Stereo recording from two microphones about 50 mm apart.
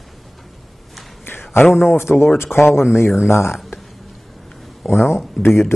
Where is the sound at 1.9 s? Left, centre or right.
Left.